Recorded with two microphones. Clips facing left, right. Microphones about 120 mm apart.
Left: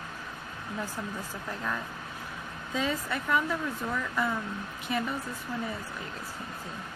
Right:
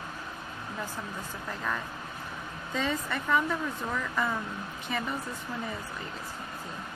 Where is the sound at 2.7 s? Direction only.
5° left (ahead or behind).